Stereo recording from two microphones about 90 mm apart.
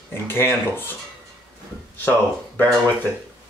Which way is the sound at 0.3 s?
25° left (ahead or behind).